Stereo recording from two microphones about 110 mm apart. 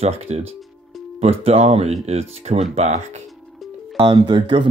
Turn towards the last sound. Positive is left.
turn(degrees=-45)  # may be behind; listen again after turning